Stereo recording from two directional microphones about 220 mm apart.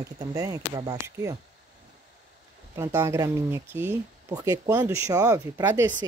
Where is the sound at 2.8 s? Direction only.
10° right (ahead or behind).